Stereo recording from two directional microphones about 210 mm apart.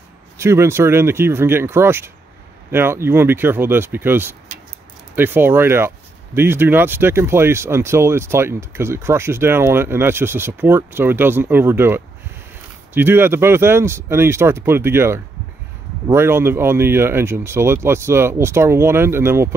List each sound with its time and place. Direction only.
0.4 s speech: 10° right (ahead or behind)